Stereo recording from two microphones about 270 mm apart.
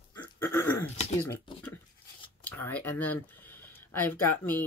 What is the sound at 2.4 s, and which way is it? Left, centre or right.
Speech, centre.